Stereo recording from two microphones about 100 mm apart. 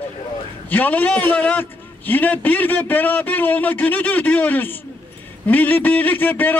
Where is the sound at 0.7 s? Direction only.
15° left (ahead or behind).